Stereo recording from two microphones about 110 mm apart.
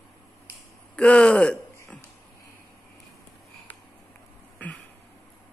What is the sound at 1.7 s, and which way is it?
Burping, 15° left (ahead or behind).